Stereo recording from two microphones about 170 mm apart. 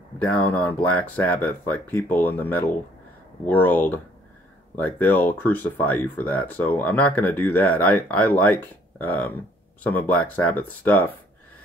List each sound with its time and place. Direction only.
0.2 s speech: 10° left (ahead or behind)